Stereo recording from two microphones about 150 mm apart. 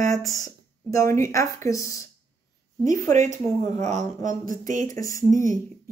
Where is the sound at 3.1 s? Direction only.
55° right (ahead or behind).